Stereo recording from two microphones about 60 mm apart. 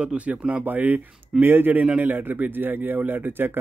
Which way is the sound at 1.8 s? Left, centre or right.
Right.